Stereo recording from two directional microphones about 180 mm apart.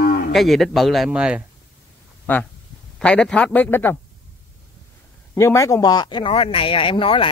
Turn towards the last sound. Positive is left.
turn(degrees=30)  # may be behind; listen again after turning